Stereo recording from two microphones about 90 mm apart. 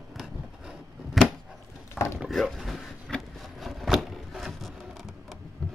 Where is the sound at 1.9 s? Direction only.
30° left (ahead or behind).